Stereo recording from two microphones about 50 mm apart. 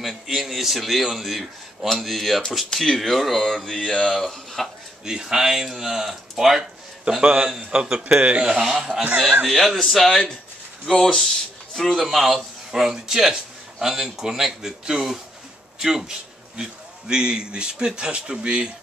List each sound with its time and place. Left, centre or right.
0.0 s a man's voice: centre
3.7 s speech: centre
4.1 s speech: centre
5.0 s a man's voice: centre
9.5 s a man's voice: centre